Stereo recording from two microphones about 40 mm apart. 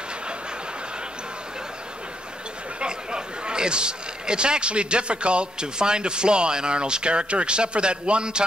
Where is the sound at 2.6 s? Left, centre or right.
Right.